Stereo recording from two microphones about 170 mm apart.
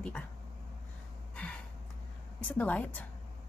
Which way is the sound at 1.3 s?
5° left (ahead or behind).